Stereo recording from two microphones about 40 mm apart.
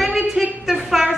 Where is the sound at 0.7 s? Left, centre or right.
Centre.